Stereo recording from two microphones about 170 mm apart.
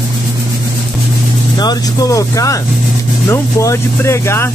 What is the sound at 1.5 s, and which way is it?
Speech, 20° left (ahead or behind).